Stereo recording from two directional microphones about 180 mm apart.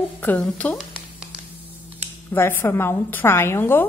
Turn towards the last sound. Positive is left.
turn(degrees=10)  # may be behind; listen again after turning